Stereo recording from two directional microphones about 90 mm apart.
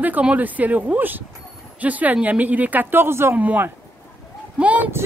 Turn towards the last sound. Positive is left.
turn(degrees=-15)  # may be behind; listen again after turning